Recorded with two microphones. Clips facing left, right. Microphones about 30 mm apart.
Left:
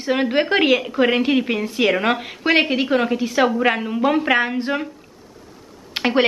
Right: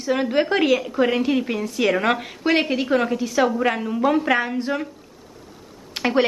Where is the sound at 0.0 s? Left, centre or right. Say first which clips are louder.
Left 1 dB; left.